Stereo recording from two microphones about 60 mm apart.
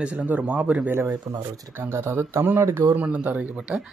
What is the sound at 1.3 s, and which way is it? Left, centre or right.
Speech, right.